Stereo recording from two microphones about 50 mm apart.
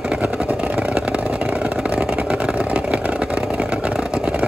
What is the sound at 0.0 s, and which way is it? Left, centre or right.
Vehicle, centre.